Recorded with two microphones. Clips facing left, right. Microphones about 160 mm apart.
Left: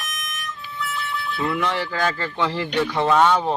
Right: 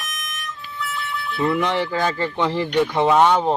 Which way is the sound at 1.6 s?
20° right (ahead or behind).